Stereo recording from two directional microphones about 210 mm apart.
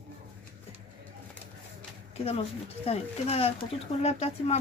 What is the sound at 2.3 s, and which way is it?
Speech, 30° left (ahead or behind).